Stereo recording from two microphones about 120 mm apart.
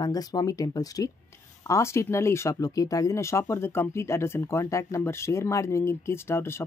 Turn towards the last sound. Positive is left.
turn(degrees=20)  # may be behind; listen again after turning